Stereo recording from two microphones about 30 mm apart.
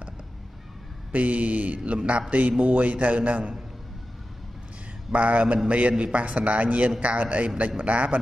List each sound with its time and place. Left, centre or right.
1.1 s speech: right
2.0 s a man's voice: right
5.1 s a man's voice: right